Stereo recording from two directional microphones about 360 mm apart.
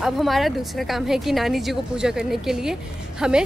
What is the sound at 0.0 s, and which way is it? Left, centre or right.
A woman's voice, centre.